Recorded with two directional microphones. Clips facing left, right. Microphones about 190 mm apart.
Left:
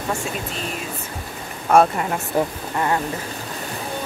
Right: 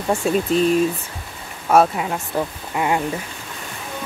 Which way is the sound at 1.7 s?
Centre (ahead or behind).